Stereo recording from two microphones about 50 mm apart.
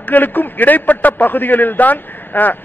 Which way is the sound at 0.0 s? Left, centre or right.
Left.